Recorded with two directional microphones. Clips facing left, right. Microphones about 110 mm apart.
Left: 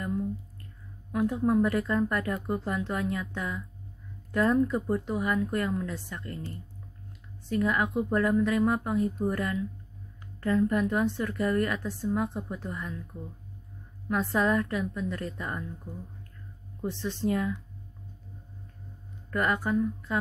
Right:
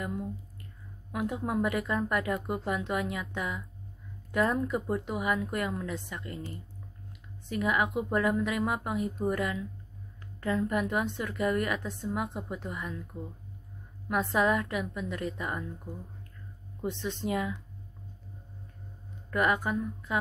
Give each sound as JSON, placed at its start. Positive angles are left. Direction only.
{"t": 0.0, "sound": "a sound", "side_deg": -15}
{"t": 1.1, "sound": "a woman's voice", "side_deg": -15}
{"t": 7.4, "sound": "a woman's voice", "side_deg": -15}
{"t": 16.8, "sound": "a woman's voice", "side_deg": -15}
{"t": 19.3, "sound": "a woman's voice", "side_deg": -15}